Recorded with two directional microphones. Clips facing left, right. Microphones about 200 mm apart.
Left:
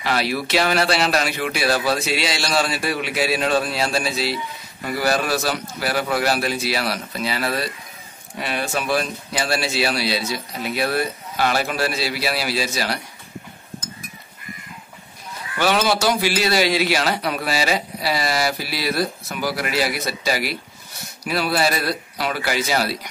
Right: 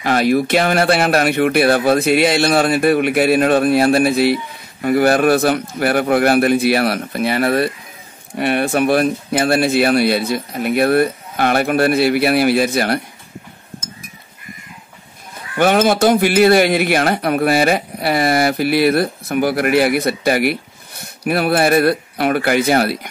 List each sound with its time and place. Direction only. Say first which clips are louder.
0.0 s a man's voice: right 8 dB; 50° right (ahead or behind)
15.3 s a man's voice: right 6 dB; 50° right (ahead or behind)